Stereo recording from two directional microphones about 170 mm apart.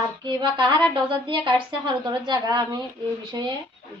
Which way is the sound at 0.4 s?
25° right (ahead or behind).